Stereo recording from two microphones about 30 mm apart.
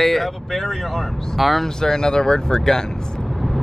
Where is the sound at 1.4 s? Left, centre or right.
Centre.